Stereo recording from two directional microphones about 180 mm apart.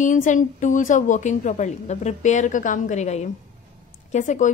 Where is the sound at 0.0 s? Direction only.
45° left (ahead or behind).